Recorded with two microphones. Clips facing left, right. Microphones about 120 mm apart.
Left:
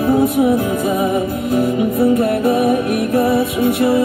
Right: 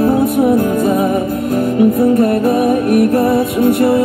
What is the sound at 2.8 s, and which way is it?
Music, 45° right (ahead or behind).